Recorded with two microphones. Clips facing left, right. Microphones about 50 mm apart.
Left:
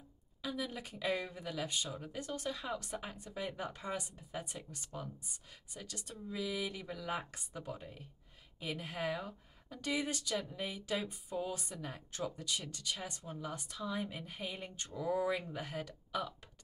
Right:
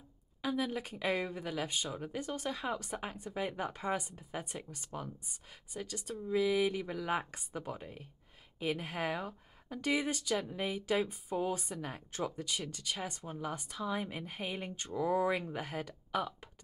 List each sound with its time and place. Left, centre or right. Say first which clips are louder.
0.4 s a sound: right 5 dB; right
0.7 s speech: right 3 dB; right
5.9 s speech: right 7 dB; right
6.2 s speech: right 9 dB; right